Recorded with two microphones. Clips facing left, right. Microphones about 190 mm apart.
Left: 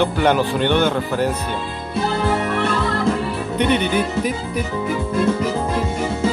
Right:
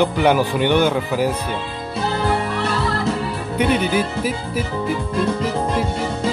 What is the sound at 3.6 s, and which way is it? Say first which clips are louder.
Speech: even; 5° right (ahead or behind).